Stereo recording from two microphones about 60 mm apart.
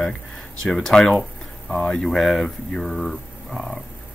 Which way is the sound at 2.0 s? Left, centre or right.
Centre.